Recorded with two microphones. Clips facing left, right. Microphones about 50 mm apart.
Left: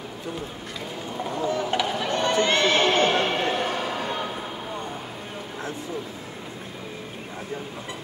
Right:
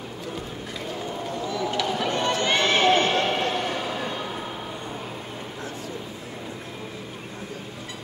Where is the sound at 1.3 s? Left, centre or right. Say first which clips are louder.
Left 4 dB; left.